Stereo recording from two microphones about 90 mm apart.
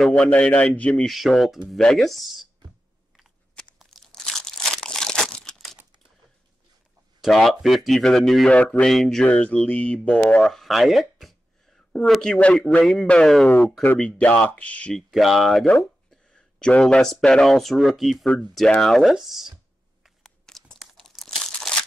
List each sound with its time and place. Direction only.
0.0 s speech: 10° left (ahead or behind)
1.0 s speech: centre (ahead or behind)
3.8 s crumpling: centre (ahead or behind)
7.2 s speech: centre (ahead or behind)
10.1 s a sound: 10° left (ahead or behind)
12.1 s speech: 10° left (ahead or behind)
13.8 s speech: 15° left (ahead or behind)
15.0 s speech: centre (ahead or behind)
20.0 s crunch: centre (ahead or behind)